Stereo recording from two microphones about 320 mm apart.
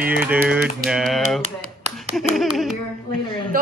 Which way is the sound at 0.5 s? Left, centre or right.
Centre.